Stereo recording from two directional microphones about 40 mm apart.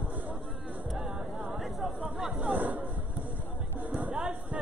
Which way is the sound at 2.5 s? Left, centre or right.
Right.